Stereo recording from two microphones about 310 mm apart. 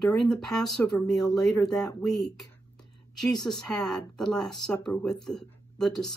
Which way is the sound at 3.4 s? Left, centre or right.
Centre.